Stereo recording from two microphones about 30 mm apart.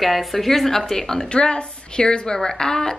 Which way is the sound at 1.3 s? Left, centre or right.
Left.